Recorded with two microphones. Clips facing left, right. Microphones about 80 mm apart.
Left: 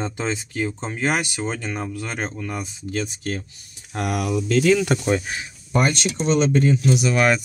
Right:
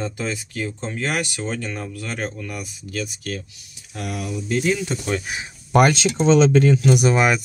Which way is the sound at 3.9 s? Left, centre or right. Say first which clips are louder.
Left 5 dB; left.